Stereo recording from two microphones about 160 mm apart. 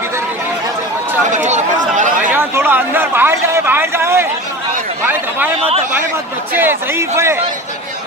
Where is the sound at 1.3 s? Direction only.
50° right (ahead or behind).